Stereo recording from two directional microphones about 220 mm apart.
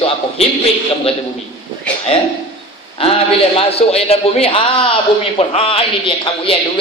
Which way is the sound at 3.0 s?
25° left (ahead or behind).